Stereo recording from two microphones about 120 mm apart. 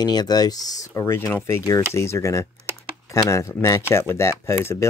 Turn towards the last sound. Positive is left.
turn(degrees=25)  # may be behind; listen again after turning